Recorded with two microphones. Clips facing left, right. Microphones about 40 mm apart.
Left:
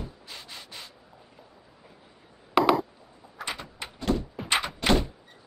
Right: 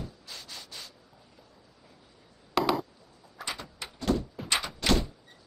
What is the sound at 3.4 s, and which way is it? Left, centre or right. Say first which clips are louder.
Door: left 2 dB; left.